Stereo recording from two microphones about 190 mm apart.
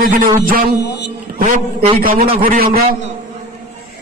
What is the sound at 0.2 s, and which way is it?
Speech, 50° right (ahead or behind).